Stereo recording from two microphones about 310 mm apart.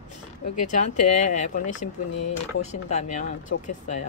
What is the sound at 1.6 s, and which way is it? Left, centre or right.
Speech, left.